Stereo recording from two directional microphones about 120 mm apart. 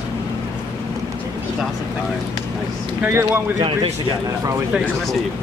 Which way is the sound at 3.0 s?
15° right (ahead or behind).